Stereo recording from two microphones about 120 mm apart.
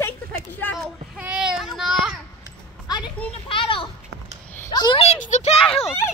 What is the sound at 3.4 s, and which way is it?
Children playing, 45° left (ahead or behind).